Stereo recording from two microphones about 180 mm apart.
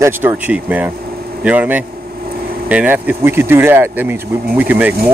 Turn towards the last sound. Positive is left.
turn(degrees=-10)  # may be behind; listen again after turning